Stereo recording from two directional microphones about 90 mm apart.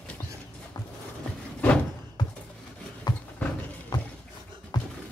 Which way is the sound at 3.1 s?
50° left (ahead or behind).